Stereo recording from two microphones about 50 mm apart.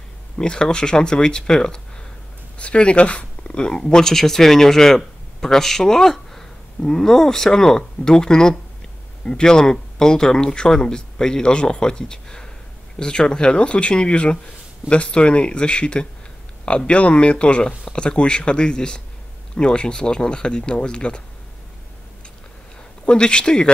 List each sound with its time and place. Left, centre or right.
0.4 s speech: centre
23.0 s speech: centre